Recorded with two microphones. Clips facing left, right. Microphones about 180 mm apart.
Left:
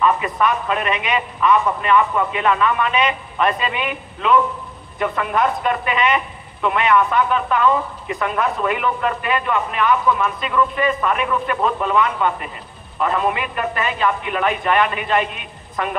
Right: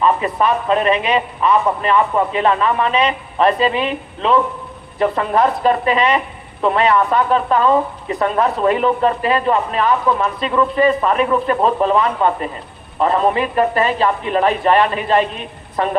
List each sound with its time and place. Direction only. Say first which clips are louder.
0.0 s speech: right 2 dB; 30° right (ahead or behind)